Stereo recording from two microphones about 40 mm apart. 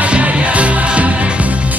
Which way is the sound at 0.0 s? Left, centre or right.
Right.